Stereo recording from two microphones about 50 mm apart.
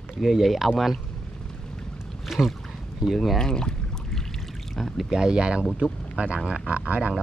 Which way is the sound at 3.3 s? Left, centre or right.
Centre.